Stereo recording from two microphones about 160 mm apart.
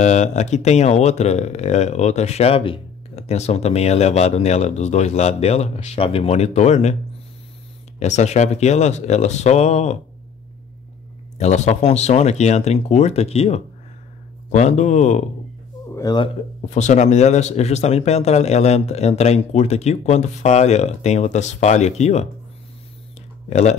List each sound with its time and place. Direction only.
0.0 s speech: 50° left (ahead or behind)
8.0 s speech: 45° left (ahead or behind)
11.3 s speech: 45° left (ahead or behind)
15.9 s a sound: 25° left (ahead or behind)
16.7 s speech: 45° left (ahead or behind)